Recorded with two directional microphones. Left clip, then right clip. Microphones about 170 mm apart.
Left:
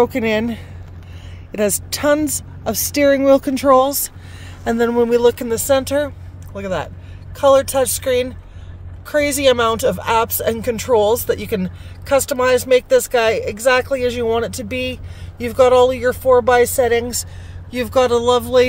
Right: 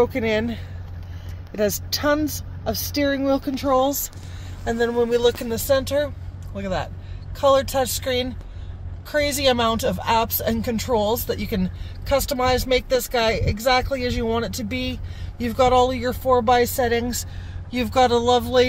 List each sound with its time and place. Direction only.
0.0 s speech: 35° left (ahead or behind)